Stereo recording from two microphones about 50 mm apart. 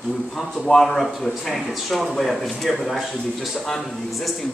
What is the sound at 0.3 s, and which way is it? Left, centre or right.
Speech, centre.